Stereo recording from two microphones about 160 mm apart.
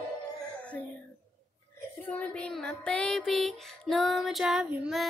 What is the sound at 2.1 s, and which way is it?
Music, 5° left (ahead or behind).